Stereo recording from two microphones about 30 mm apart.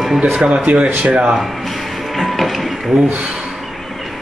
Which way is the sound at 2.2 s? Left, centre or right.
Centre.